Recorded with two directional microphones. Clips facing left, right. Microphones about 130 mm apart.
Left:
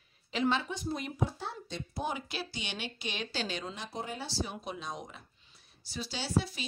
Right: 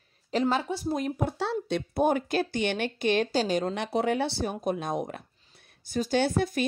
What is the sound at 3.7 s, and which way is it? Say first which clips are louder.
A woman's voice: right 13 dB; 70° right (ahead or behind).